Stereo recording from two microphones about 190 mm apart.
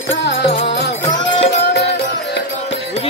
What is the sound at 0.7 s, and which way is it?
Music, 65° left (ahead or behind).